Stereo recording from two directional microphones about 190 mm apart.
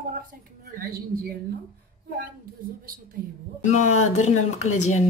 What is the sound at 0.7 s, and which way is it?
Speech, 50° right (ahead or behind).